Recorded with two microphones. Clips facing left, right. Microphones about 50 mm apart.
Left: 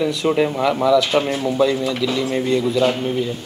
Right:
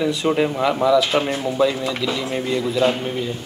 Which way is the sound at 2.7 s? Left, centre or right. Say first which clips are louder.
Left 1 dB; centre.